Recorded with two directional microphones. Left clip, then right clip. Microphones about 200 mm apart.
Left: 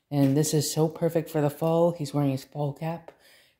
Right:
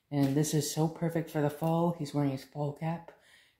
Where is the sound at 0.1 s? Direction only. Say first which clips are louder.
Left 6 dB; 45° left (ahead or behind).